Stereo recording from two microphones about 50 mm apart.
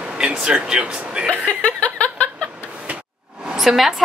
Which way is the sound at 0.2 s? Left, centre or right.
Centre.